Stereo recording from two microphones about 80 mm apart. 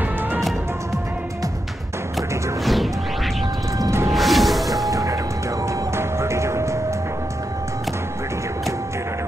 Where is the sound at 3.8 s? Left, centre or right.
Right.